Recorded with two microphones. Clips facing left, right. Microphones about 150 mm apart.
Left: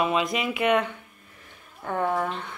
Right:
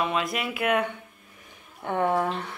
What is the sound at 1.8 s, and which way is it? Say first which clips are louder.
Speech: right 1 dB; 25° right (ahead or behind).